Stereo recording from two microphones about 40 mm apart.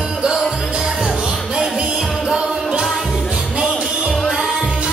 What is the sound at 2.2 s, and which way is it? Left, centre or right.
Music, centre.